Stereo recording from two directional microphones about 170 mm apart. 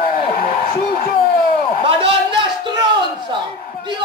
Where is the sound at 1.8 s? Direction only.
30° right (ahead or behind).